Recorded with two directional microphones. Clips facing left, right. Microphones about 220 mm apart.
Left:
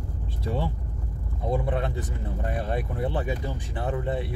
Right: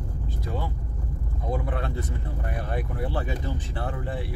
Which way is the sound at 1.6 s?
20° left (ahead or behind).